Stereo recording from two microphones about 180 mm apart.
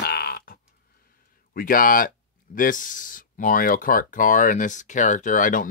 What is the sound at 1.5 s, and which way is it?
Speech, 50° left (ahead or behind).